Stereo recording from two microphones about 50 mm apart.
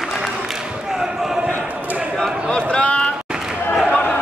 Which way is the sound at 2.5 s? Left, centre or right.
Left.